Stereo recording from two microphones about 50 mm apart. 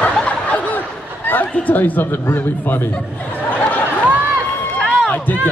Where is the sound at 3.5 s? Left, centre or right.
Left.